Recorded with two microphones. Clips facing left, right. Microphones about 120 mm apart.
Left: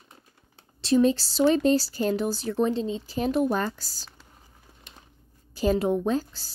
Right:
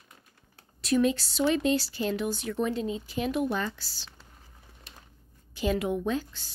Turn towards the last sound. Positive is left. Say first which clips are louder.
# left 4 dB
turn(degrees=35)  # may be behind; listen again after turning